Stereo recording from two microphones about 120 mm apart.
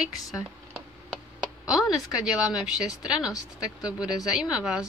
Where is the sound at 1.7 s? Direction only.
5° right (ahead or behind).